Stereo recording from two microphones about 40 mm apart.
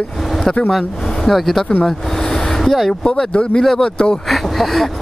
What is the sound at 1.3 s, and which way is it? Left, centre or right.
Speech, centre.